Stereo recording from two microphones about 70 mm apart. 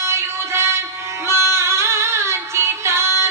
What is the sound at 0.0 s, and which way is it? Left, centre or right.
Music, right.